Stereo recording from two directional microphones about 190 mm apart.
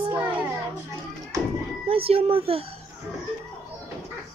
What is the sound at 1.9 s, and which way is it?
Speech, 30° right (ahead or behind).